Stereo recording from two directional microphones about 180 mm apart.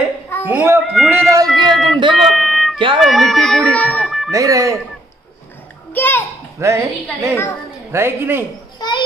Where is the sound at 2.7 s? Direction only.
30° right (ahead or behind).